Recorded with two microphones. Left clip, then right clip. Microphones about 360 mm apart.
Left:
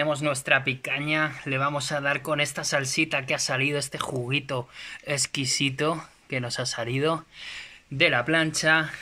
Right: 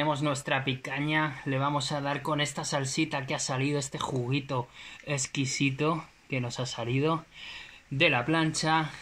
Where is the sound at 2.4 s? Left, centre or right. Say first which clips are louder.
Left 4 dB; left.